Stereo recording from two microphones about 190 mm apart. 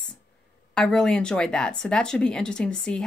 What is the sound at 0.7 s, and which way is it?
Speech, 5° left (ahead or behind).